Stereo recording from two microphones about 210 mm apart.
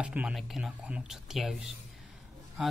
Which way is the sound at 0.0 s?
5° right (ahead or behind).